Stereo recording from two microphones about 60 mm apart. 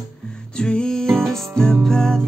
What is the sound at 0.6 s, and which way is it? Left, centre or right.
Music, centre.